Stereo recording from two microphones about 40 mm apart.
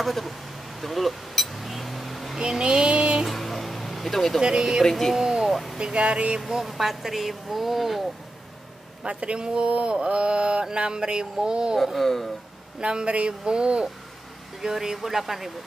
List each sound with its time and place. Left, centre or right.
0.0 s speech: centre
0.7 s vehicle: centre
2.3 s child singing: centre
3.3 s music: centre
4.4 s speech: centre
4.8 s speech: centre
5.1 s speech: centre
5.5 s a sound: centre
5.8 s mantra: right
6.4 s speech: centre
9.0 s mantra: right
11.8 s speech: centre
12.8 s mantra: right
14.6 s speech: centre